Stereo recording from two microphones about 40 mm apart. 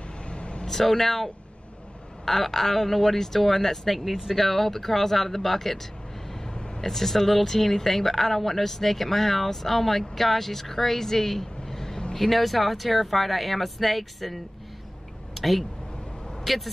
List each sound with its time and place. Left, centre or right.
0.3 s vehicle: left
0.7 s speech: centre
6.8 s speech: centre
15.3 s a sound: centre
16.4 s speech: centre